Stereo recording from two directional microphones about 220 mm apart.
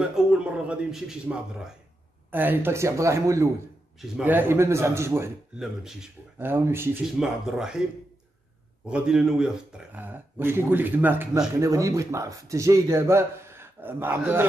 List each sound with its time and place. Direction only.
0.1 s a man's voice: 5° right (ahead or behind)
8.8 s speech: 5° right (ahead or behind)